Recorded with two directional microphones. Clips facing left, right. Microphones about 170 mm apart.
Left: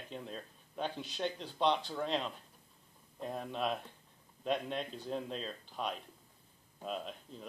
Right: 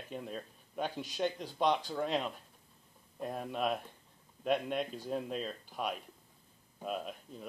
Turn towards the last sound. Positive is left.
turn(degrees=-10)  # may be behind; listen again after turning